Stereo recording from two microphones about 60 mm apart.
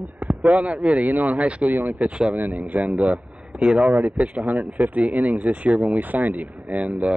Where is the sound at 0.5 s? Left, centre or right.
Right.